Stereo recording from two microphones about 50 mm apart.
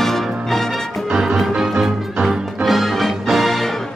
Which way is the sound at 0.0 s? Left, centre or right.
Centre.